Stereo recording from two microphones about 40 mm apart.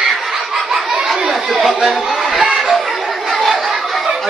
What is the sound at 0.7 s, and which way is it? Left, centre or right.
Chatter, centre.